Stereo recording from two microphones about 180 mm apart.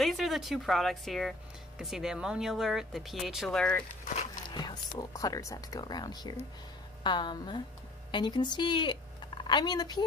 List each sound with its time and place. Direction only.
0.0 s speech: centre (ahead or behind)
4.6 s speech: 20° left (ahead or behind)